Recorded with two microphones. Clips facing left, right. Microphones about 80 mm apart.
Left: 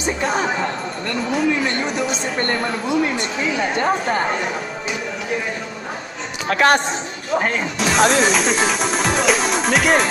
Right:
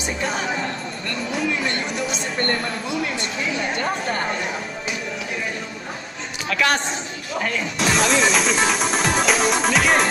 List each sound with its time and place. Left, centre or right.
0.2 s music: left
6.5 s a man's voice: left
7.8 s music: centre